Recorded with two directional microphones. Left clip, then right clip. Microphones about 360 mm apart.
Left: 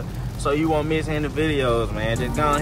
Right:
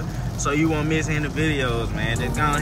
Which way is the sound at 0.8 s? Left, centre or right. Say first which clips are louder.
Even; centre.